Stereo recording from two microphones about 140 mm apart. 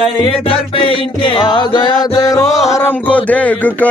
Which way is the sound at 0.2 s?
40° left (ahead or behind).